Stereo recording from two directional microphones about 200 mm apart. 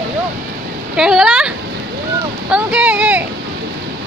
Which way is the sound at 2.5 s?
5° right (ahead or behind).